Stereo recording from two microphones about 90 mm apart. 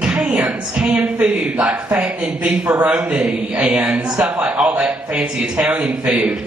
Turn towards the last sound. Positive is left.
turn(degrees=-5)  # may be behind; listen again after turning